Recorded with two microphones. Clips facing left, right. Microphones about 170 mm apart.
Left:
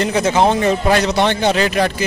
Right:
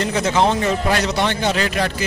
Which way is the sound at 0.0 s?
15° left (ahead or behind).